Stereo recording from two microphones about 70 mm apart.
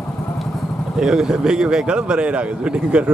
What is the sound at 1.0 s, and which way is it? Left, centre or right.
Speech, centre.